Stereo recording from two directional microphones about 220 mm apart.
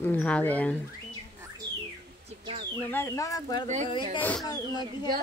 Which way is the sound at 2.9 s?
10° left (ahead or behind).